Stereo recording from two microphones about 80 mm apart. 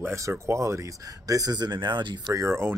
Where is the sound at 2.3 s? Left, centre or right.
Right.